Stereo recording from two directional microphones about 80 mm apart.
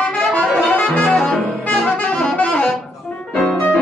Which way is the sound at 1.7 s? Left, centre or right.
Centre.